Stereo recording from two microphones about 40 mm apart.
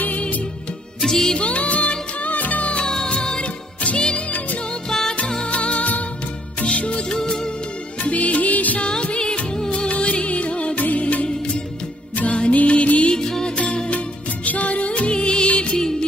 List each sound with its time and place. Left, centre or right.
1.0 s music: centre
1.3 s music: left
2.8 s music: centre
4.8 s music: centre
5.5 s music: left
8.0 s music: left
8.8 s music: left
13.1 s music: centre
13.8 s music: left